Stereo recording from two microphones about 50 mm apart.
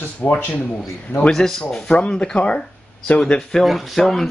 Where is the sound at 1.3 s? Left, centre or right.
Centre; by 3.2 s left.